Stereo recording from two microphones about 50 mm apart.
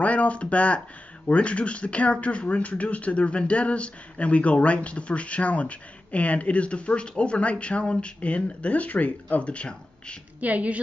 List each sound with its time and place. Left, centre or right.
0.0 s speech: left
10.4 s a woman's voice: right